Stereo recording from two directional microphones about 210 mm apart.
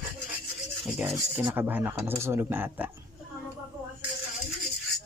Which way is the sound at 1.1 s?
10° right (ahead or behind).